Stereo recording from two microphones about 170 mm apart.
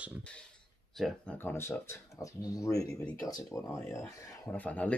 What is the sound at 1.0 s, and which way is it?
Speech, 10° left (ahead or behind).